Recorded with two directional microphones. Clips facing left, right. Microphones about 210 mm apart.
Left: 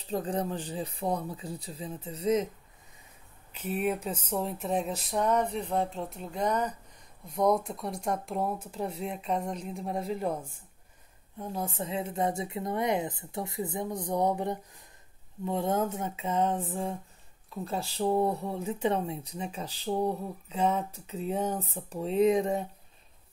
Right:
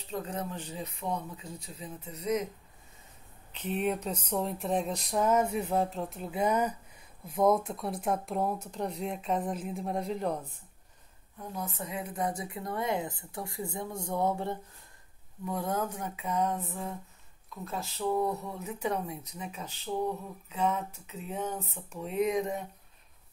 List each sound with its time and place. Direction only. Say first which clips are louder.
0.1 s speech: left 5 dB; 30° left (ahead or behind)
3.5 s speech: left 1 dB; 5° left (ahead or behind)
11.3 s speech: left 4 dB; 30° left (ahead or behind)